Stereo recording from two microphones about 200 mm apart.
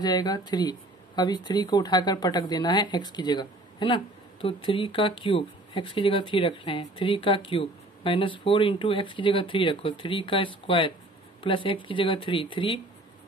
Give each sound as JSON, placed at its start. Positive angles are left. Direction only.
{"t": 0.0, "sound": "speech", "side_deg": 20}